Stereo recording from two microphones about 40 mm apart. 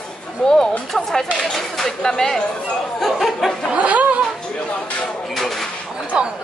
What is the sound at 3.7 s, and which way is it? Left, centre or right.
Speech, right.